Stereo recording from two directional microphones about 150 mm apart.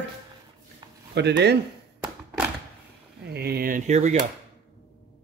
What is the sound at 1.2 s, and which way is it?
Speech, 90° right.